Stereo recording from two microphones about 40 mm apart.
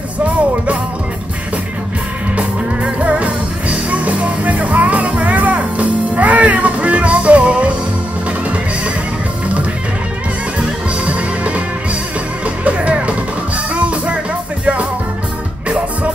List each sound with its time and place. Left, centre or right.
2.3 s music: right
11.1 s music: right
12.6 s music: right